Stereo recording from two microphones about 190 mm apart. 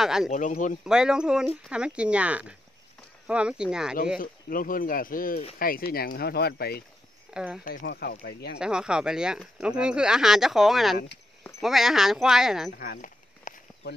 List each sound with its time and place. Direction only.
0.0 s speech: centre (ahead or behind)
0.3 s speech: 40° left (ahead or behind)
0.8 s speech: 5° right (ahead or behind)
4.2 s speech: 45° left (ahead or behind)
7.3 s speech: 5° right (ahead or behind)
7.6 s speech: 50° left (ahead or behind)
8.5 s speech: 5° right (ahead or behind)
12.7 s a sound: 50° left (ahead or behind)